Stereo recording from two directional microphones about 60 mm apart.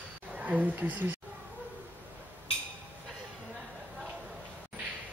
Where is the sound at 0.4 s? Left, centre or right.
Right.